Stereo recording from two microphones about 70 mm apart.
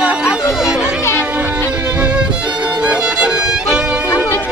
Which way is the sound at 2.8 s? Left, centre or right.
Centre.